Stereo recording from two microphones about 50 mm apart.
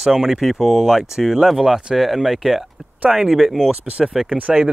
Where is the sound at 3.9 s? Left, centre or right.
Right.